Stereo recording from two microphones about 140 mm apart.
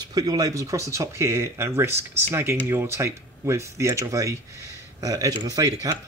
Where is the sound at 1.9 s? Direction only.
50° right (ahead or behind).